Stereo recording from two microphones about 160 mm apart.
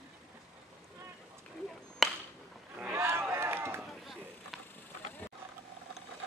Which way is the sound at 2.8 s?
15° right (ahead or behind).